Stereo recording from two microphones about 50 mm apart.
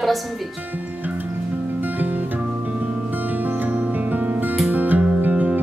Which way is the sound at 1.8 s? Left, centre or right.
Right.